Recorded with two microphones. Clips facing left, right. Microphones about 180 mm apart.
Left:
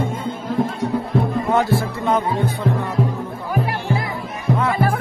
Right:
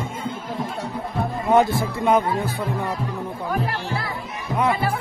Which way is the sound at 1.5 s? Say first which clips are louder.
Right 5 dB; 20° right (ahead or behind).